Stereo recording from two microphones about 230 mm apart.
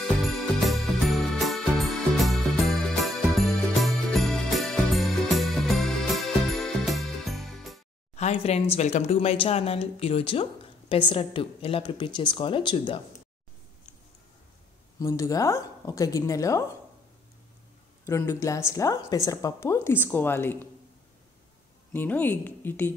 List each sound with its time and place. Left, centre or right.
0.2 s music: centre
8.2 s speech: left
15.0 s speech: centre
18.0 s speech: centre
21.9 s speech: centre